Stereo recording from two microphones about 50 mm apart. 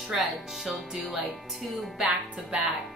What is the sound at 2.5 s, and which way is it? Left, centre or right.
Speech, right.